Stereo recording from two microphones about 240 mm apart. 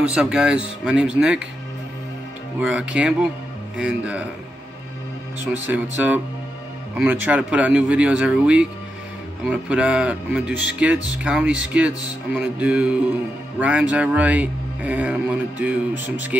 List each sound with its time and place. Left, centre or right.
0.0 s speech: centre
2.6 s speech: centre
5.7 s speech: centre